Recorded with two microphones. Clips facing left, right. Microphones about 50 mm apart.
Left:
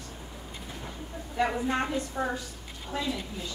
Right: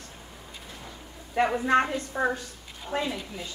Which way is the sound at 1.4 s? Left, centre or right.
Right.